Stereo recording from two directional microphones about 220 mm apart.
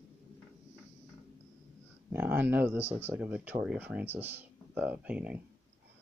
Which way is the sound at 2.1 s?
10° right (ahead or behind).